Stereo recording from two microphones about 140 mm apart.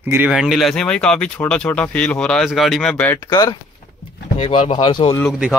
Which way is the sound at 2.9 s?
15° left (ahead or behind).